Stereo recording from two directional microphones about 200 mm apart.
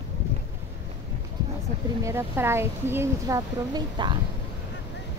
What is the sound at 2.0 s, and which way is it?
A woman's voice, 10° right (ahead or behind).